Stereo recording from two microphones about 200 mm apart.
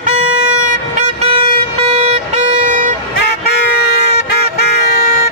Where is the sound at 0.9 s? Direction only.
30° right (ahead or behind).